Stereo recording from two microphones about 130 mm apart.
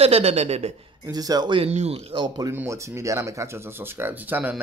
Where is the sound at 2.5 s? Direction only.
20° right (ahead or behind).